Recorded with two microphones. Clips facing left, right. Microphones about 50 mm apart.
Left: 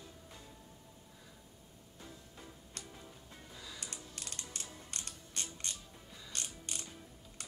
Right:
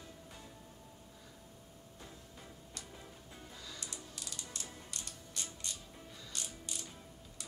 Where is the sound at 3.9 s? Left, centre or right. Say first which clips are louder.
Even; left.